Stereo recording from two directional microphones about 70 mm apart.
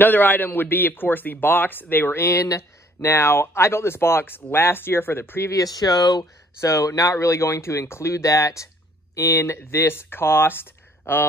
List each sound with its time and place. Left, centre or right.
0.0 s a man's voice: left
5.5 s speech: left
6.6 s speech: left
9.1 s speech: left